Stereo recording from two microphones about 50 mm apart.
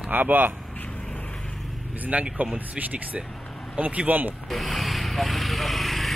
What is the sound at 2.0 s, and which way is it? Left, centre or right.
Speech, right.